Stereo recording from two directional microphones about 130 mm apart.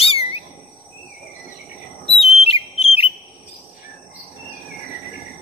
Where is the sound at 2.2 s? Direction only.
50° left (ahead or behind).